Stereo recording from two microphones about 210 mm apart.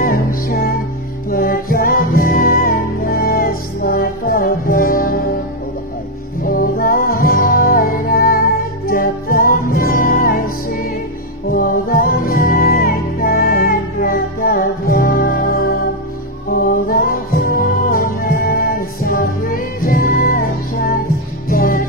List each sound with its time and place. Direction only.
0.0 s music: 45° left (ahead or behind)
6.4 s music: 45° left (ahead or behind)